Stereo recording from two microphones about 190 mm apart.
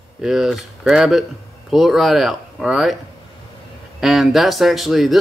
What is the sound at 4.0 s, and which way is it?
Speech, centre (ahead or behind).